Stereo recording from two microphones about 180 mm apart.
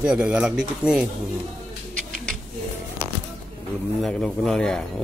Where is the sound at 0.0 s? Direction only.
5° right (ahead or behind).